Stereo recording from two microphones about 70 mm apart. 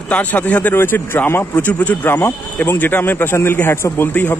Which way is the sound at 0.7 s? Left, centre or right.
Left.